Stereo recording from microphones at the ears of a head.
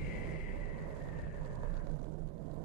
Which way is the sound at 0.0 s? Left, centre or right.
Right.